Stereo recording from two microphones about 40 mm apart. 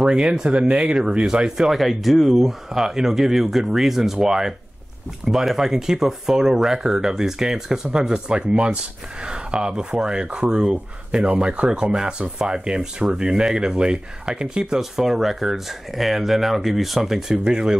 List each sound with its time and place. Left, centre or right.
0.0 s speech: centre
0.3 s speech: right
1.6 s speech: centre
11.2 s speech: right
14.8 s speech: centre
17.5 s speech: right